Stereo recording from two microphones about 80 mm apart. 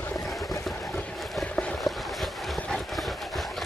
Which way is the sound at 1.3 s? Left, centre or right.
Centre.